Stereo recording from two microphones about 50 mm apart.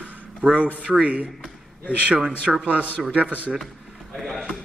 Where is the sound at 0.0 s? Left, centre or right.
Right.